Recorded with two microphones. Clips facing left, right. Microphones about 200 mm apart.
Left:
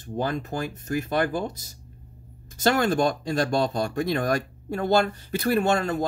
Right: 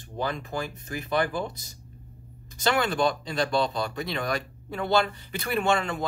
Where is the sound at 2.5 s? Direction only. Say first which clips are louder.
Left 3 dB; 45° left (ahead or behind).